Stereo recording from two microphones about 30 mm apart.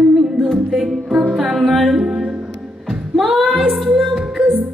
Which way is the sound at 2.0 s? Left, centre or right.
Centre.